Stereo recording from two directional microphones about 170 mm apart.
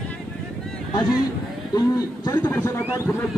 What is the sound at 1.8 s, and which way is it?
Speech, 25° left (ahead or behind).